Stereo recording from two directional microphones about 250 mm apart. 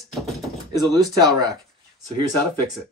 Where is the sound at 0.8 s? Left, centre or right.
Centre.